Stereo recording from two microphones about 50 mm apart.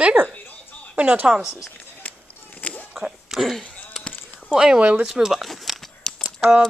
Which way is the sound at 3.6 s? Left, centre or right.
Left.